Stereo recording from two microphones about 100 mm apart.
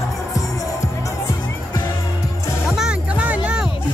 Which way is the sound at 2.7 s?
10° right (ahead or behind).